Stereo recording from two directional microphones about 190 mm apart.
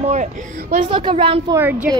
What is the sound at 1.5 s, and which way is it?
Speech, 10° right (ahead or behind).